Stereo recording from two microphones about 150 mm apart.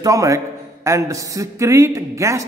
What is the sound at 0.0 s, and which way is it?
A man's voice, 20° right (ahead or behind).